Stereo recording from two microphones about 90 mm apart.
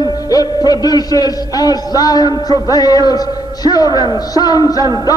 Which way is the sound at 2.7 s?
45° left (ahead or behind).